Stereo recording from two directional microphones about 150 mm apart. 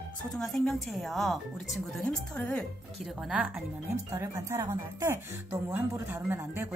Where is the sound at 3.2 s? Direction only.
5° right (ahead or behind).